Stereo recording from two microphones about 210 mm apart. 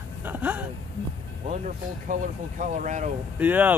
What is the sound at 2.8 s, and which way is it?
Speech, 35° right (ahead or behind).